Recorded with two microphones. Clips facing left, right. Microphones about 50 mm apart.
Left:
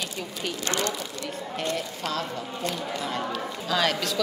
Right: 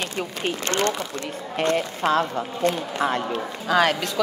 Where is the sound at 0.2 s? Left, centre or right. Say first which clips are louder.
Right 6 dB; right.